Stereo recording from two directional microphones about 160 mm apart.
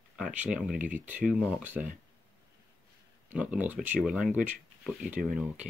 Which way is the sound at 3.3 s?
10° right (ahead or behind).